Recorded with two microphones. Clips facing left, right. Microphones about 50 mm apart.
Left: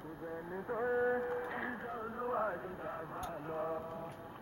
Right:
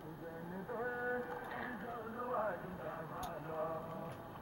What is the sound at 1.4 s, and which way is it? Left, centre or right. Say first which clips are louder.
Speech: left 4 dB; left.